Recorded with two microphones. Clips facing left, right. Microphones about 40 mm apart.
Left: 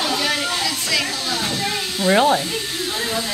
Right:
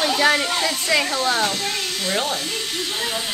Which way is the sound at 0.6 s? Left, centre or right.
Right.